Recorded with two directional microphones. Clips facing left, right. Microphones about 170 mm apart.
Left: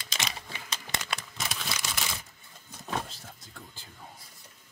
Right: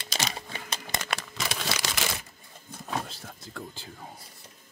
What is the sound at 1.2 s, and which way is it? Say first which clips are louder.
Crumpling: right 4 dB; 80° right.